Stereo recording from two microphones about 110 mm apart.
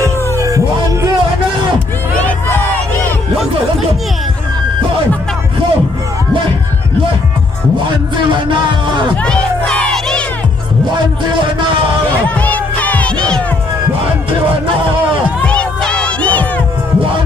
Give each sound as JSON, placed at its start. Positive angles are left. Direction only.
{"t": 0.0, "sound": "music", "side_deg": -30}
{"t": 2.1, "sound": "crowd", "side_deg": 15}
{"t": 8.3, "sound": "music", "side_deg": -45}
{"t": 9.2, "sound": "crowd", "side_deg": 10}
{"t": 12.4, "sound": "music", "side_deg": 15}
{"t": 15.4, "sound": "crowd", "side_deg": 10}